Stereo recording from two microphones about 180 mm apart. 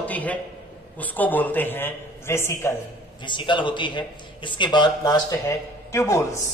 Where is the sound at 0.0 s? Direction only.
10° left (ahead or behind).